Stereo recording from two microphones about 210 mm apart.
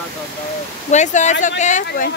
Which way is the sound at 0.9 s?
35° left (ahead or behind).